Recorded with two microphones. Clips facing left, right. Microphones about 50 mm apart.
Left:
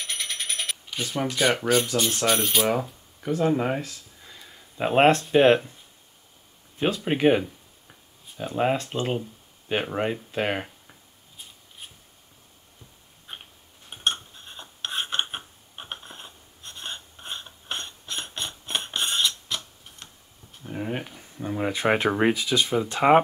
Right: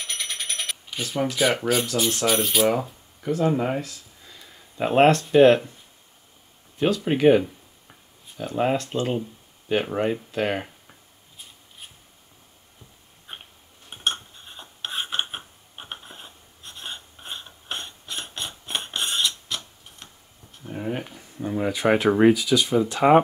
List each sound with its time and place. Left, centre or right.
0.0 s coin: centre
2.0 s speech: centre
4.7 s speech: centre
6.8 s speech: left
10.3 s speech: centre
13.3 s a sound: centre
21.5 s a sound: left
22.2 s speech: left